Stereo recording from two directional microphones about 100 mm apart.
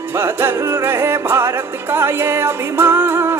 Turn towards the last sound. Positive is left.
turn(degrees=-25)  # may be behind; listen again after turning